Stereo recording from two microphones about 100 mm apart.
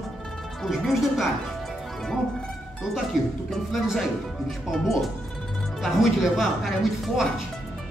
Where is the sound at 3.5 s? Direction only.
Centre (ahead or behind).